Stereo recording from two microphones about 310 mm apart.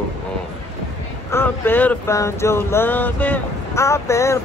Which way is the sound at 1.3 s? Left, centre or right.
Centre.